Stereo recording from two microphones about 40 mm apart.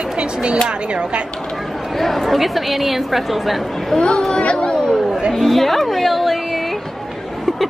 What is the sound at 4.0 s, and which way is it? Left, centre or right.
Speech, centre.